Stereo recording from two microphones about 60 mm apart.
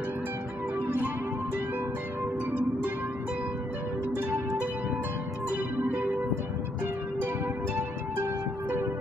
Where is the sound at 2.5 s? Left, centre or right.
Right.